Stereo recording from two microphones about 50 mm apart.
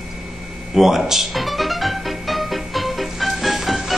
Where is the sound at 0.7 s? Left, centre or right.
Centre.